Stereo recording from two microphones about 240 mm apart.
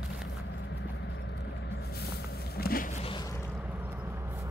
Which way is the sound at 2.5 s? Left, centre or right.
Left.